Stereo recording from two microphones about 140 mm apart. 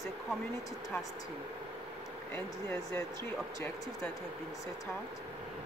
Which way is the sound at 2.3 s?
15° left (ahead or behind).